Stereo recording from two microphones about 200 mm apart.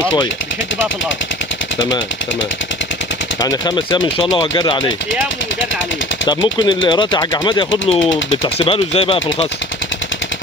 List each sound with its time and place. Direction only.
3.3 s speech: 20° left (ahead or behind)
6.2 s speech: 25° left (ahead or behind)